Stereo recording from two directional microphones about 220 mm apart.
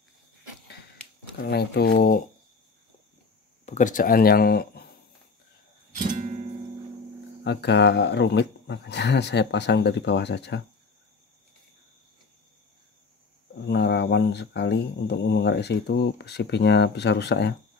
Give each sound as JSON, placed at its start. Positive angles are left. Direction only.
{"t": 1.4, "sound": "speech", "side_deg": 45}
{"t": 3.6, "sound": "speech", "side_deg": 35}
{"t": 5.9, "sound": "music", "side_deg": -35}
{"t": 7.4, "sound": "speech", "side_deg": 50}
{"t": 13.7, "sound": "speech", "side_deg": 50}